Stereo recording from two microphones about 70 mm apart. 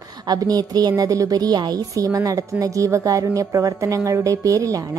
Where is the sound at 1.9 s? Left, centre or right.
Right.